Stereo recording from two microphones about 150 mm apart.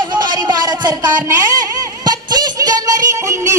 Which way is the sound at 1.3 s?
20° right (ahead or behind).